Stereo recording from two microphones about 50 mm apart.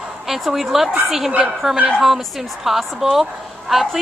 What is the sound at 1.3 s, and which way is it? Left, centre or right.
Speech, right.